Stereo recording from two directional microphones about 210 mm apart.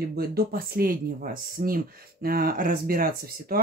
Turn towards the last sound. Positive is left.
turn(degrees=-45)  # may be behind; listen again after turning